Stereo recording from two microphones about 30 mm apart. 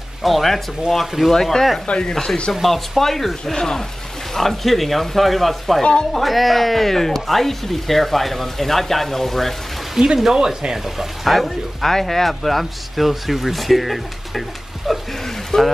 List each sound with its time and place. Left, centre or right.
0.2 s speech: centre
1.9 s speech: left
2.6 s speech: centre
9.9 s speech: centre
11.2 s speech: centre
15.5 s speech: left